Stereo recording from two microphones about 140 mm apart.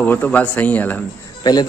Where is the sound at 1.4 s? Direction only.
30° left (ahead or behind).